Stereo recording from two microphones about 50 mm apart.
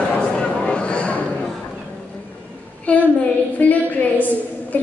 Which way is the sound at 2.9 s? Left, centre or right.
Left.